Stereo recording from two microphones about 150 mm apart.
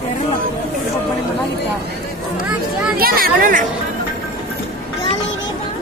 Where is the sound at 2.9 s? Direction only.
80° right.